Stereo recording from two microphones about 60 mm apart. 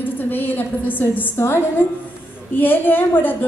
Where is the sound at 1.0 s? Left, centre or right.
Left.